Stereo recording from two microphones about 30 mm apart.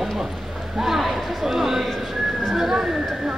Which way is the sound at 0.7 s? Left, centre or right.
Centre.